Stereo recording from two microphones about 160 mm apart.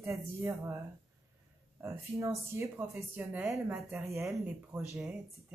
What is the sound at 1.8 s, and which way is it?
Speech, 20° right (ahead or behind).